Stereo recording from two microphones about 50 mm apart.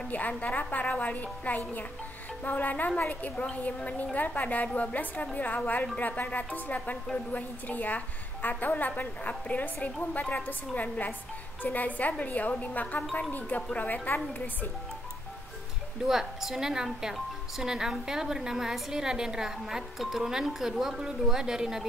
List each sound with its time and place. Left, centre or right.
0.1 s a woman's voice: left
9.8 s a woman's voice: centre
10.7 s a woman's voice: left
16.1 s speech: centre